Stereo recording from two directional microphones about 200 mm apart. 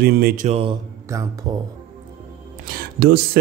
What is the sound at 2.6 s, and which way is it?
Speech, 50° right (ahead or behind).